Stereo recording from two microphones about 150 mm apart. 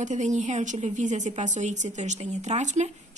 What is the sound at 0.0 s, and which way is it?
A woman's voice, 55° right (ahead or behind).